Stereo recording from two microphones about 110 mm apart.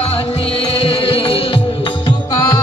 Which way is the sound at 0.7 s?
55° left (ahead or behind).